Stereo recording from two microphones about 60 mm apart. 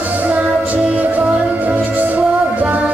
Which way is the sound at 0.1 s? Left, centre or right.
Right.